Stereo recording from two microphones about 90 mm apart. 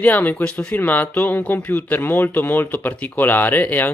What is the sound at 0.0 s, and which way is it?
Speech, 20° left (ahead or behind).